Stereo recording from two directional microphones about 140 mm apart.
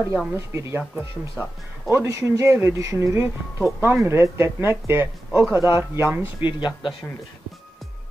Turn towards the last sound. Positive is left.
turn(degrees=35)  # may be behind; listen again after turning